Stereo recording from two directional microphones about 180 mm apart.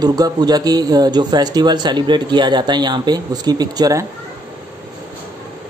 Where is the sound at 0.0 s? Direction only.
20° right (ahead or behind).